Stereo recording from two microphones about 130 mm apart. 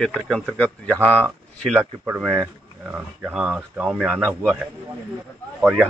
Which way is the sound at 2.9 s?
10° right (ahead or behind).